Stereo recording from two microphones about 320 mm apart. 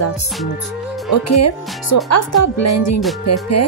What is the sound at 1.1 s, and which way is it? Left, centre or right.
Speech, left.